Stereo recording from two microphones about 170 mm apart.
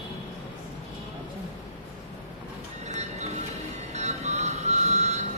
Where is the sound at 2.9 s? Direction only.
40° right (ahead or behind).